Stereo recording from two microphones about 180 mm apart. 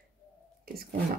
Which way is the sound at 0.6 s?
55° right (ahead or behind).